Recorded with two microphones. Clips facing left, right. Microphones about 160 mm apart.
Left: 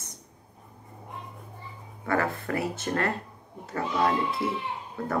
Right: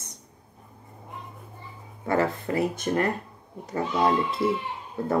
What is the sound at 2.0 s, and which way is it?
Speech, 20° right (ahead or behind).